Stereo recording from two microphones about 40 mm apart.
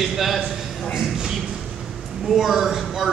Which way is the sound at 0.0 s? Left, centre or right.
Centre.